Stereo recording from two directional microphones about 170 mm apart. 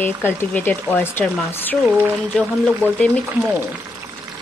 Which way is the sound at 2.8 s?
10° left (ahead or behind).